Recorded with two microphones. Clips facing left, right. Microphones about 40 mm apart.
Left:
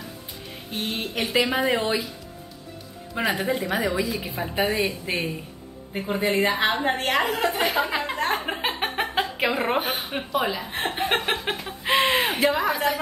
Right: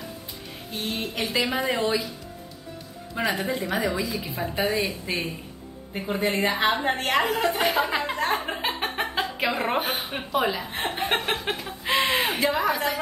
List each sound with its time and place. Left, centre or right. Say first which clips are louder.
0.7 s a woman's voice: left 1 dB; centre
3.2 s a woman's voice: left 2 dB; centre
5.1 s speech: left 1 dB; left
5.9 s a woman's voice: left 2 dB; centre
8.4 s a sound: left 1 dB; centre
9.5 s a woman's voice: left 1 dB; centre
11.1 s a sound: left 1 dB; centre